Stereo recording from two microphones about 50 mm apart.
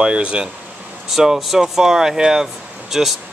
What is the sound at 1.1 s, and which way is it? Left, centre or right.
Speech, centre.